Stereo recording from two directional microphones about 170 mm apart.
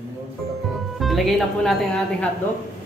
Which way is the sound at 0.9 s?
Centre (ahead or behind).